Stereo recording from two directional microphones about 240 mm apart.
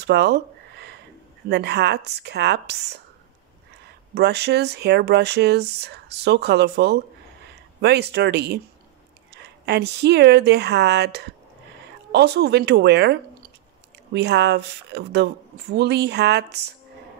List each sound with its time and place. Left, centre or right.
0.0 s a sound: right
1.5 s speech: right
4.1 s speech: right